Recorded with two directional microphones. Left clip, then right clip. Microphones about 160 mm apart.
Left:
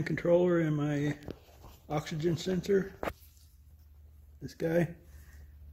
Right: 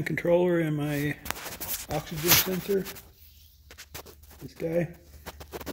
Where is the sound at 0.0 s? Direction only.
15° right (ahead or behind).